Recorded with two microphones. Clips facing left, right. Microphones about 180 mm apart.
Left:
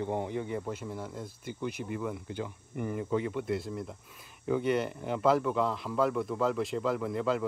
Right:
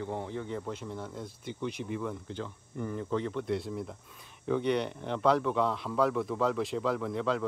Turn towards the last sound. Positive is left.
turn(degrees=0)  # may be behind; listen again after turning